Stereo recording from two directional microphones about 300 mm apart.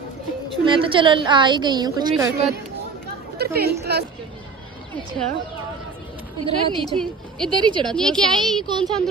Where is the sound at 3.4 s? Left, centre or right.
Right.